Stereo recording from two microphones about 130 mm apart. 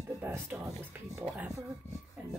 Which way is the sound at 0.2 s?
15° right (ahead or behind).